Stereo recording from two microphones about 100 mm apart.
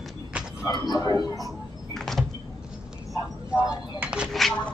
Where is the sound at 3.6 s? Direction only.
15° right (ahead or behind).